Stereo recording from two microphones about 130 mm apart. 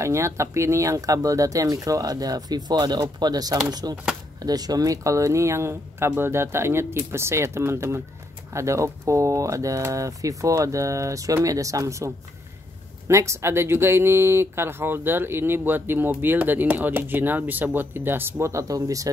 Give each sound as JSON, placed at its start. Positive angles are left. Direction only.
{"t": 0.0, "sound": "speech", "side_deg": -20}
{"t": 13.1, "sound": "speech", "side_deg": -20}